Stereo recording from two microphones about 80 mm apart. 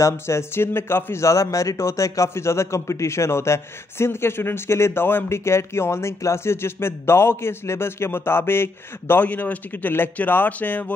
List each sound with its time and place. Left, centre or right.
0.0 s speech: left